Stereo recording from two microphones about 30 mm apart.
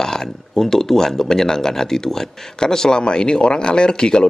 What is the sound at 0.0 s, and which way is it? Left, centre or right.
Speech, centre.